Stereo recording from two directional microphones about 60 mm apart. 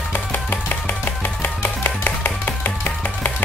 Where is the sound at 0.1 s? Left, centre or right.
Left.